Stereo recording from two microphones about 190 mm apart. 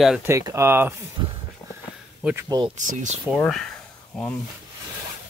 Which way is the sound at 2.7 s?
40° right (ahead or behind).